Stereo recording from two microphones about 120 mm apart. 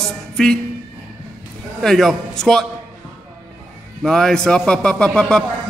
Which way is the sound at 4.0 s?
5° left (ahead or behind).